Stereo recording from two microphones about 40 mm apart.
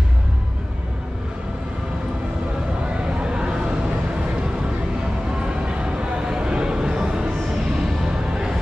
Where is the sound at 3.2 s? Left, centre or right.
Right.